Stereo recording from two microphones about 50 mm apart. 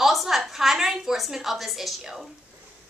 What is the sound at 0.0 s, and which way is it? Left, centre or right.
A woman's voice, centre.